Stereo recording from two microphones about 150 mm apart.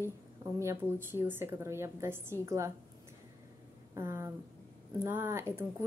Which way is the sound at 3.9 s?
15° right (ahead or behind).